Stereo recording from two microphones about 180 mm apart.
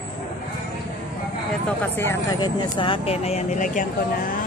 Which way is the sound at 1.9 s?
15° left (ahead or behind).